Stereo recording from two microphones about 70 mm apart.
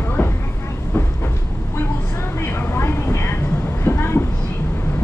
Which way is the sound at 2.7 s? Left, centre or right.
Left.